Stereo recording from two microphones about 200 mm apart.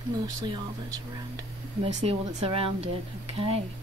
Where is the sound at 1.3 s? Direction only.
30° right (ahead or behind).